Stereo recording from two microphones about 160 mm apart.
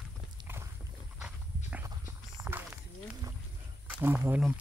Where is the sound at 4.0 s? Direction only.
15° right (ahead or behind).